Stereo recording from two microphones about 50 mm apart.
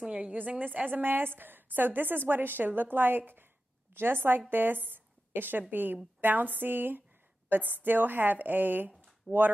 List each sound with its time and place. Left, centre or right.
0.0 s a woman's voice: right
9.3 s speech: centre